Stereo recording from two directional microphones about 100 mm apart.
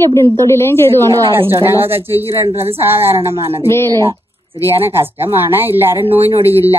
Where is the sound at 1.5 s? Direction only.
20° right (ahead or behind).